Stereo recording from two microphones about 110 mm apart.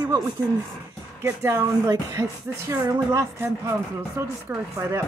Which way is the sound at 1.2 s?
25° right (ahead or behind).